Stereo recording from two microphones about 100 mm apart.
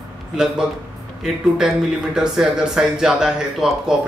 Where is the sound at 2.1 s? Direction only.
5° right (ahead or behind).